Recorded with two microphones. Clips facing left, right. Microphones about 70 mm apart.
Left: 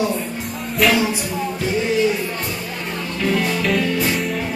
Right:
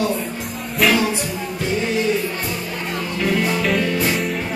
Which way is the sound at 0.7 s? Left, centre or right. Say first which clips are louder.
Even; centre.